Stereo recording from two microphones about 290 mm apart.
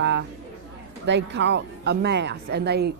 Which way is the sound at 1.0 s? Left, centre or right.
Right.